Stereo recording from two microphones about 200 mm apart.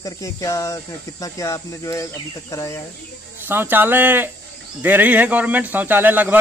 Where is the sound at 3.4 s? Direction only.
10° right (ahead or behind).